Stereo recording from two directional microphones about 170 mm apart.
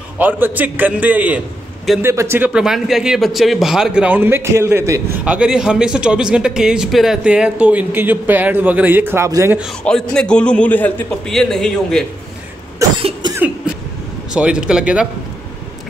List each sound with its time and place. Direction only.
0.2 s speech: 10° right (ahead or behind)
5.2 s speech: 5° right (ahead or behind)
9.6 s a man's voice: centre (ahead or behind)
12.7 s cough: 25° right (ahead or behind)
14.3 s a man's voice: 5° right (ahead or behind)